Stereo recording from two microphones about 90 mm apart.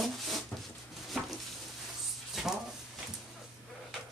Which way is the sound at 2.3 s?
5° right (ahead or behind).